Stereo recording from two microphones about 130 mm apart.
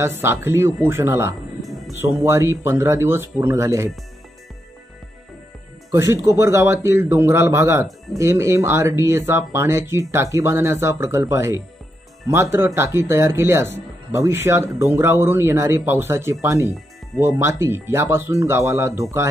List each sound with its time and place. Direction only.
0.0 s speech: 20° right (ahead or behind)
5.9 s speech: 20° right (ahead or behind)